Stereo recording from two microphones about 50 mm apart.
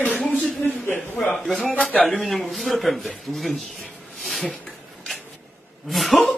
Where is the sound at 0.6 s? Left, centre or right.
Left.